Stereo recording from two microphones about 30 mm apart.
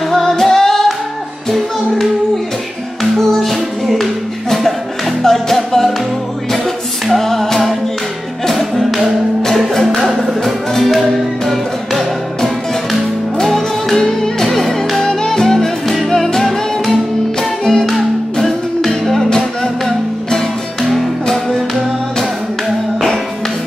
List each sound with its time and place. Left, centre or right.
0.1 s music: centre
3.2 s music: centre
3.8 s a sound: centre
5.2 s music: centre
7.2 s music: centre
10.4 s music: centre
13.4 s music: centre
14.4 s music: centre
15.0 s music: centre
16.4 s music: centre
17.4 s music: centre
20.2 s music: centre
21.3 s music: centre